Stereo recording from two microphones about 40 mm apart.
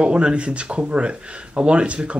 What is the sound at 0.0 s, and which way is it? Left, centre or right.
Speech, right.